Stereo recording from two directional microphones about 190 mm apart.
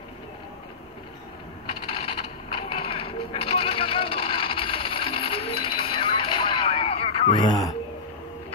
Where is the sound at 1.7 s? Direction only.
30° left (ahead or behind).